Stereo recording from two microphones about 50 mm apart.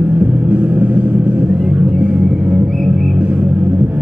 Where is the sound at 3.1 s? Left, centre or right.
Right.